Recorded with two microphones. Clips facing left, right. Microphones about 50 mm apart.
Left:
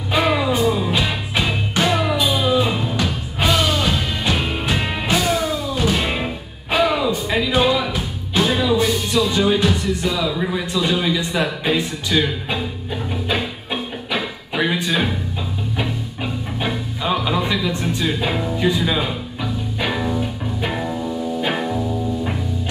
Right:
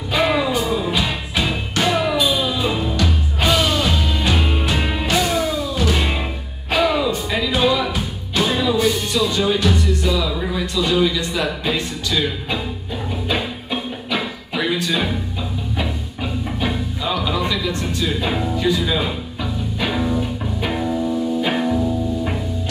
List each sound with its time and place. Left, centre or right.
0.1 s music: centre
10.7 s a sound: centre
11.1 s speech: centre
13.3 s music: centre